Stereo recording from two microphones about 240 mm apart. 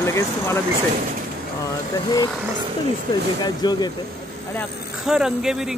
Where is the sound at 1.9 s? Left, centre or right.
Centre.